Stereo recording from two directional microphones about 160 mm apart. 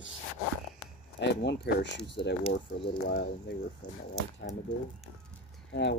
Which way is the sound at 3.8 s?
25° left (ahead or behind).